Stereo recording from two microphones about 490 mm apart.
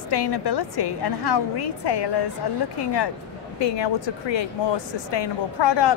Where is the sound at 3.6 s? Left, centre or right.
Left.